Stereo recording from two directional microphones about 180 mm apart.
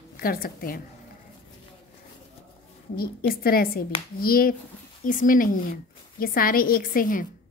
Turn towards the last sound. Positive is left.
turn(degrees=50)  # may be behind; listen again after turning